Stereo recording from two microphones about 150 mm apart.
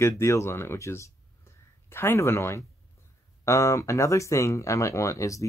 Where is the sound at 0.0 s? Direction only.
20° left (ahead or behind).